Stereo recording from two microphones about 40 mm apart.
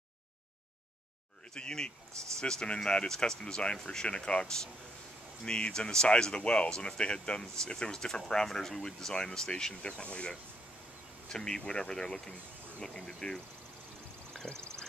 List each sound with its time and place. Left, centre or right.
1.5 s speech: centre
11.2 s speech: centre
14.3 s a sound: centre